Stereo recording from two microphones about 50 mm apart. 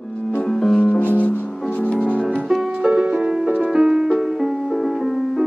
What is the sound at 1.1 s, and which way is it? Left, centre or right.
Music, left.